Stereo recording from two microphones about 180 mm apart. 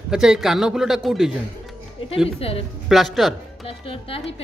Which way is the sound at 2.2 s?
35° left (ahead or behind).